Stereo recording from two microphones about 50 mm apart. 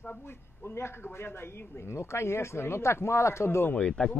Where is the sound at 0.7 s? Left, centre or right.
Left.